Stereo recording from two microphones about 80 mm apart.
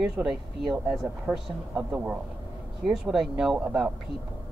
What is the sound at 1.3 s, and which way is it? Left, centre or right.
Speech, centre.